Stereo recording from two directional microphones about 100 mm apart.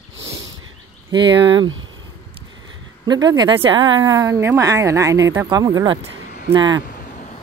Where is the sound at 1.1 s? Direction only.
50° right (ahead or behind).